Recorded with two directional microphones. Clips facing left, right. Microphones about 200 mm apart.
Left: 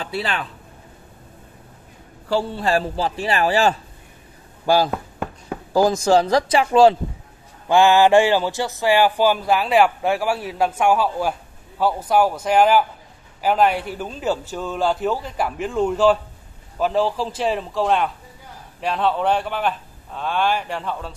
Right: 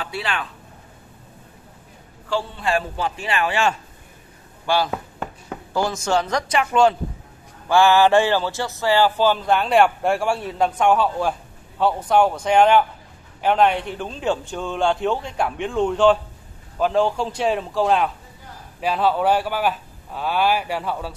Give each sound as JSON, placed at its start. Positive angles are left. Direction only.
{"t": 0.0, "sound": "a man's voice", "side_deg": 35}
{"t": 2.2, "sound": "a man's voice", "side_deg": 40}
{"t": 7.6, "sound": "a man's voice", "side_deg": 20}